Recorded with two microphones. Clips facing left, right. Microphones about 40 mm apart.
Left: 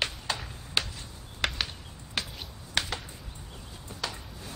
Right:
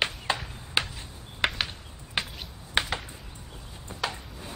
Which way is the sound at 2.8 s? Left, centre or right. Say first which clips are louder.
Right 3 dB; right.